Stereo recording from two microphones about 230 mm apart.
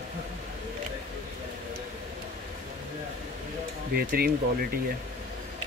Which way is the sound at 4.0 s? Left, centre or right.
Right.